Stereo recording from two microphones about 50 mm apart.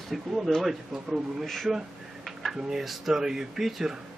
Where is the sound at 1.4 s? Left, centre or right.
Centre.